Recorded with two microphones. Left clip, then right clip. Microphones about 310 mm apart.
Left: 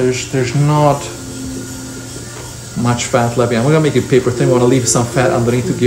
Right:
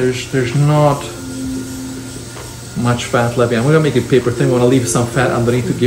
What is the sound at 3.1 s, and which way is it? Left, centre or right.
Speech, centre.